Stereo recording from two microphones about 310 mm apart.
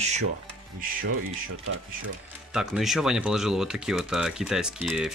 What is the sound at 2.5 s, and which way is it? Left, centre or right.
Speech, centre.